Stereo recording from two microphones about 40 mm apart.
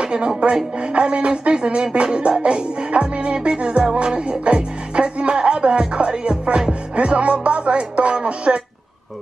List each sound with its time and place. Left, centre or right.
0.0 s speech: right
2.4 s music: right